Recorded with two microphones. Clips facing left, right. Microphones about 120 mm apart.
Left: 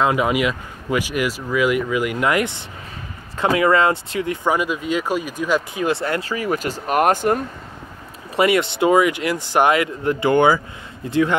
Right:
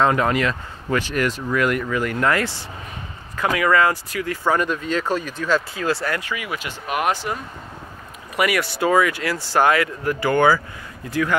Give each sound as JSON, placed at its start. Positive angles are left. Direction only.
{"t": 0.0, "sound": "speech", "side_deg": 10}
{"t": 4.5, "sound": "speech", "side_deg": 10}
{"t": 8.4, "sound": "speech", "side_deg": 25}